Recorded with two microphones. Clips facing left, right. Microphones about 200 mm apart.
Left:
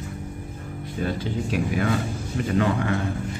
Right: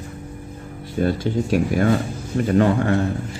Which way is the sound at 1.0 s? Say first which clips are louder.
Right 6 dB; 40° right (ahead or behind).